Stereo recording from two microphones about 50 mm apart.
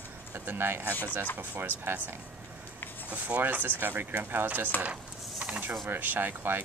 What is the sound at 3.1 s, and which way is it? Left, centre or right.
Speech, right.